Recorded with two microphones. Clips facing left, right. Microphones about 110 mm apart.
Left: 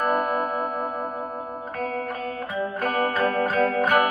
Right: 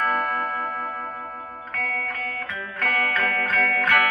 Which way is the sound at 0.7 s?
20° left (ahead or behind).